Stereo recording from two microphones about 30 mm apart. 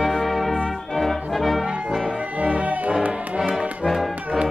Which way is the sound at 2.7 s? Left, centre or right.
Right.